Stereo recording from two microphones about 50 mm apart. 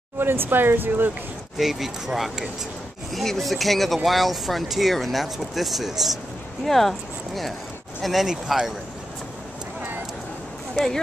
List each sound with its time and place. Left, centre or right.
0.2 s speech: right
1.6 s speech: centre